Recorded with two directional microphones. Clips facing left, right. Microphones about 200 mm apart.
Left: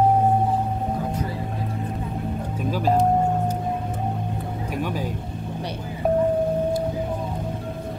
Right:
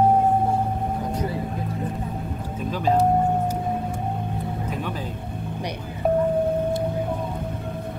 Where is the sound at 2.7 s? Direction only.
5° left (ahead or behind).